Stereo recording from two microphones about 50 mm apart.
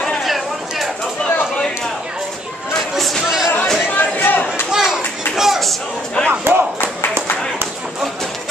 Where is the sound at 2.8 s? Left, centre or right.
Centre.